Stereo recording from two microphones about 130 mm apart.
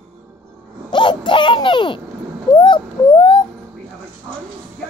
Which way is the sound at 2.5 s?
40° left (ahead or behind).